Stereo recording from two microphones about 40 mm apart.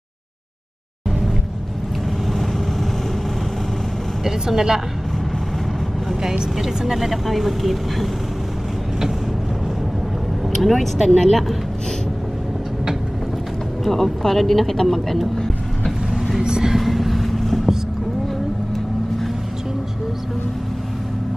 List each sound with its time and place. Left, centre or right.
4.2 s speech: centre
6.5 s speech: centre
10.6 s speech: centre
13.8 s speech: centre
15.3 s vehicle: centre
16.3 s vehicle: centre
16.7 s vehicle: centre